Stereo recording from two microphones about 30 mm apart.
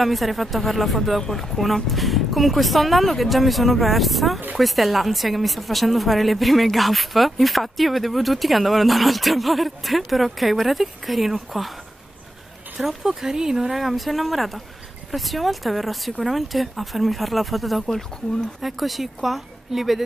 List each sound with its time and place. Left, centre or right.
0.0 s a woman's voice: centre
12.7 s speech: centre
13.7 s a woman's voice: centre